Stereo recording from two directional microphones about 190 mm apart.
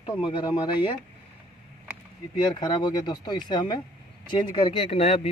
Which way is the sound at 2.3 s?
25° left (ahead or behind).